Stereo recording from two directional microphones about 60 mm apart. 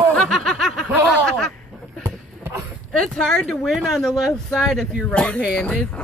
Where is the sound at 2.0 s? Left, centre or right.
Right.